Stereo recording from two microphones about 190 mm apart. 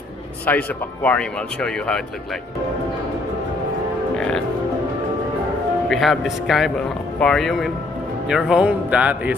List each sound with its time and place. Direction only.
0.5 s speech: 5° left (ahead or behind)
4.2 s music: 5° left (ahead or behind)
5.9 s speech: centre (ahead or behind)